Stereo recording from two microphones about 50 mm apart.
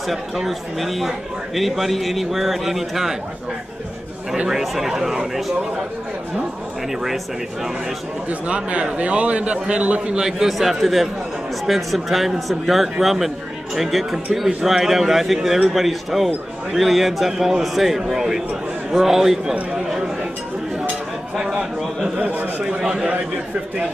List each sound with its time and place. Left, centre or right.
0.1 s a man's voice: centre
4.5 s speech: centre
8.3 s a man's voice: right; by 19.5 s centre
21.4 s speech: centre
22.1 s a man's voice: right
22.7 s speech: centre